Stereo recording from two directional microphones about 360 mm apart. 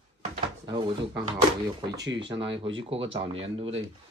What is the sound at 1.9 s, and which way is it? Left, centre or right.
Speech, right.